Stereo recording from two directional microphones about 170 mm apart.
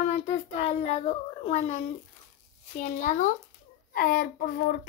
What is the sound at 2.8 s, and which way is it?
Speech, 50° left (ahead or behind).